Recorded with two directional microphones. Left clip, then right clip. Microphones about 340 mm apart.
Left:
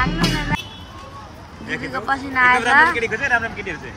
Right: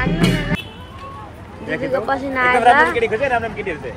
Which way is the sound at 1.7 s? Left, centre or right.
Centre.